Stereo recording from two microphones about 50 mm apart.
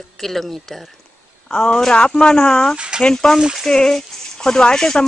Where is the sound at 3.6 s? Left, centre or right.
Centre.